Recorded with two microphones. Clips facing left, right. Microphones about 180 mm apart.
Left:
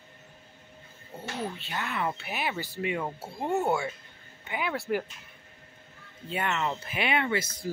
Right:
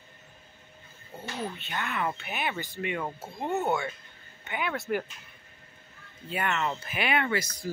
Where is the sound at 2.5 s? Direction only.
10° left (ahead or behind).